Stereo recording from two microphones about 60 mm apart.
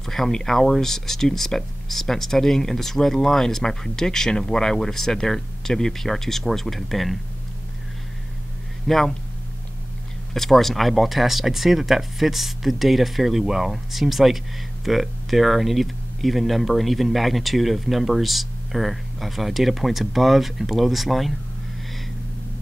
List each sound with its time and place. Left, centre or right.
0.0 s speech: centre
8.8 s speech: centre
10.3 s speech: centre